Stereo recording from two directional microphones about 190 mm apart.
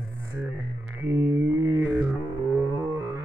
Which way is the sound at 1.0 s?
15° right (ahead or behind).